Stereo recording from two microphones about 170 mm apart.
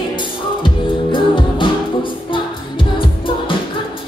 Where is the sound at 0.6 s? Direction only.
30° left (ahead or behind).